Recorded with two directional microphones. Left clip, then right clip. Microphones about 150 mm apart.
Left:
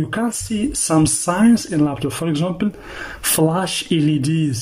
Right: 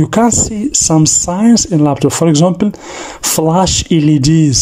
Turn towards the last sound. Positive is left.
turn(degrees=-30)  # may be behind; listen again after turning